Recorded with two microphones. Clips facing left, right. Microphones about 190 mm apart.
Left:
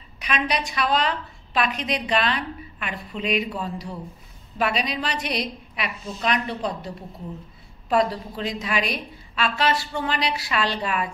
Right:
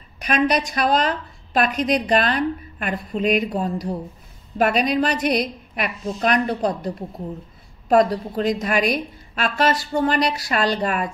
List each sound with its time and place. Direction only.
0.2 s a woman's voice: 45° right (ahead or behind)
7.9 s a woman's voice: 45° right (ahead or behind)